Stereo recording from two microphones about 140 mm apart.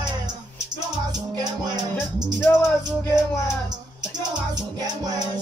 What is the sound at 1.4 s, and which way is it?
Music, 30° right (ahead or behind).